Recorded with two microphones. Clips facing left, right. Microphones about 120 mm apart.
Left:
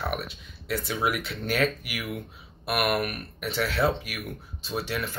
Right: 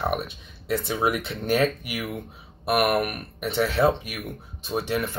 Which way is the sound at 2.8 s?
50° right (ahead or behind).